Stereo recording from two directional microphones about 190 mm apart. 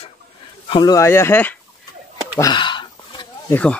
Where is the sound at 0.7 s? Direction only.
20° left (ahead or behind).